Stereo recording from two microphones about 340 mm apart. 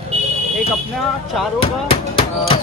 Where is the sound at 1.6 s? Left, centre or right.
Centre.